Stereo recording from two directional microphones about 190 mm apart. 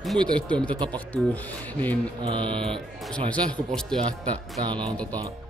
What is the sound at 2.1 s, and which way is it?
Speech, 25° right (ahead or behind).